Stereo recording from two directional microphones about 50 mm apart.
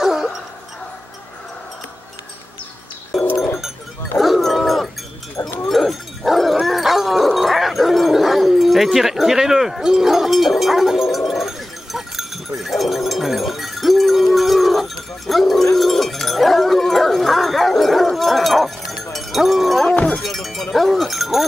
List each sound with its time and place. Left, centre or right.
0.0 s a sound: centre
4.2 s livestock: centre
5.6 s dog: centre
19.1 s cowbell: centre
19.9 s cowbell: left
20.2 s sheep: centre
20.7 s cowbell: centre